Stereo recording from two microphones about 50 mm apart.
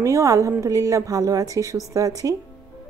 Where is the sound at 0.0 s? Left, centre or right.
Right.